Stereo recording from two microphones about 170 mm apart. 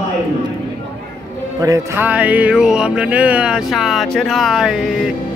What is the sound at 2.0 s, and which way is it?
Music, 10° right (ahead or behind).